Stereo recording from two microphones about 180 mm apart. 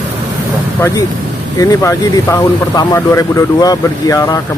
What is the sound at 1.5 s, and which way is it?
Speech, 20° left (ahead or behind).